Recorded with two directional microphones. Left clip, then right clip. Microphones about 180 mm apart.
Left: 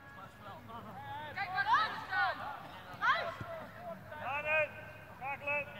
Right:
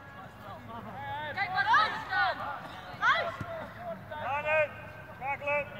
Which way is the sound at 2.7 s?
25° right (ahead or behind).